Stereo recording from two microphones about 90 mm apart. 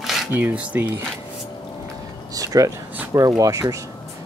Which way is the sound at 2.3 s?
40° right (ahead or behind).